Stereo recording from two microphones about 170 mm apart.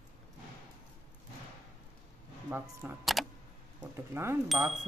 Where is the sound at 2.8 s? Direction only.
10° right (ahead or behind).